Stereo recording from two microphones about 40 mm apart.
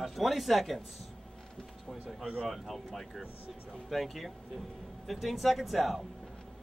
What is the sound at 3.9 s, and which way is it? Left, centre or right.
Speech, centre.